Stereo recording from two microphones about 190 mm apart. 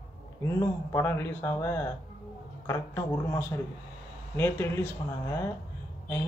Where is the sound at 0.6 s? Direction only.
15° left (ahead or behind).